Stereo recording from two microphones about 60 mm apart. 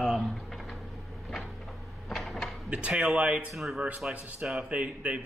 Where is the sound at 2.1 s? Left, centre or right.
Centre.